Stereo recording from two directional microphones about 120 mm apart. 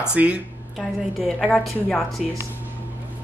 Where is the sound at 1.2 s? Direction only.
Centre (ahead or behind).